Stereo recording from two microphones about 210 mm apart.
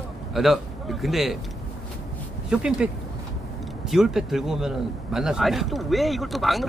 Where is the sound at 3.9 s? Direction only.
Centre (ahead or behind).